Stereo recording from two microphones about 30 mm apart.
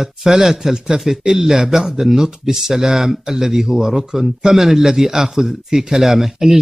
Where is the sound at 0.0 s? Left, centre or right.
Centre.